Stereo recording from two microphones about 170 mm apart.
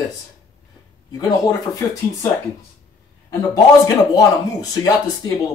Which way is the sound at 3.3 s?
20° left (ahead or behind).